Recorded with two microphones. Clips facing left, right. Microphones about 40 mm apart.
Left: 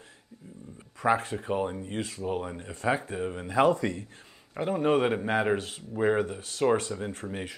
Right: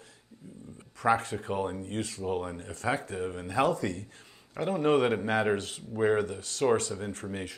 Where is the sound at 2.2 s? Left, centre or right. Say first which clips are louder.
Even; centre.